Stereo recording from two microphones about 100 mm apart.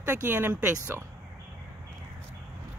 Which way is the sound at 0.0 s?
20° right (ahead or behind).